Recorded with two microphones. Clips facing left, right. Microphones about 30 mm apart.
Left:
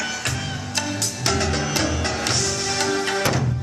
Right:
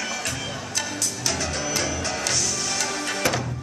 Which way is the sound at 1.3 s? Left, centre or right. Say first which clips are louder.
Left 5 dB; left.